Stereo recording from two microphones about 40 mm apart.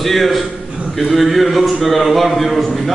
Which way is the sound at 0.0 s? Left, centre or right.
Centre.